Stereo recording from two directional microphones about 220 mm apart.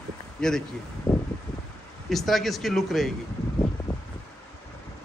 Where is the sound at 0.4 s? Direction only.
5° left (ahead or behind).